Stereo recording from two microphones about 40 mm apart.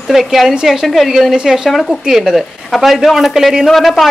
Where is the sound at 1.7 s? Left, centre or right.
Centre.